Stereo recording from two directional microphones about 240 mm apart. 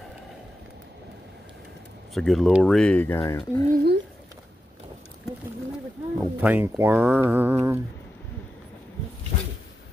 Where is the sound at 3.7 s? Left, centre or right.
Right.